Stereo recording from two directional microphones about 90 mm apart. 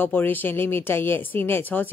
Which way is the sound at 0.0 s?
20° left (ahead or behind).